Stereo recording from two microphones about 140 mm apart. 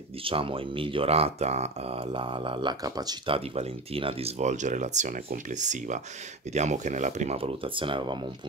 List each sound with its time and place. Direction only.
0.2 s speech: 40° right (ahead or behind)
3.3 s speech: 45° right (ahead or behind)